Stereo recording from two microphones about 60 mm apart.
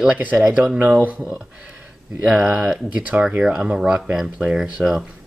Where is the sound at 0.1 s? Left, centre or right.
Right; by 5.0 s centre.